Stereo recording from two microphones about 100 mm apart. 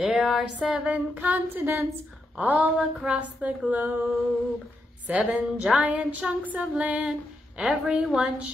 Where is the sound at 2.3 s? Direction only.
10° right (ahead or behind).